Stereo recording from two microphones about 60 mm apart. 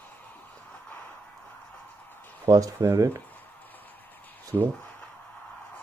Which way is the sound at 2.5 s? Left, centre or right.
Right.